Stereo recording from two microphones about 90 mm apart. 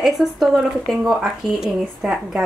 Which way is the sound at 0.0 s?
Centre (ahead or behind).